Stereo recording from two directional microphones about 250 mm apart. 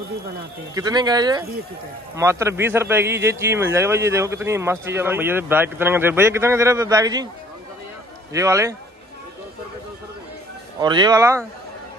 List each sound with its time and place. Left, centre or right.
0.7 s speech: centre
8.3 s speech: centre
10.8 s speech: centre